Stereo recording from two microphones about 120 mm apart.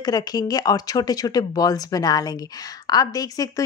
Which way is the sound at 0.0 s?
35° left (ahead or behind).